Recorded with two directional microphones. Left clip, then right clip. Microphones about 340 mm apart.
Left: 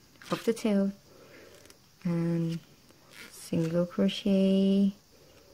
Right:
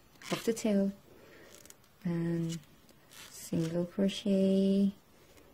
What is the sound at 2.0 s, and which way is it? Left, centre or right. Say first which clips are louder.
Speech: left 4 dB; centre.